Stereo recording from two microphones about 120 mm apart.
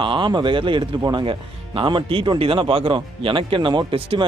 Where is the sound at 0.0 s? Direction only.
45° right (ahead or behind).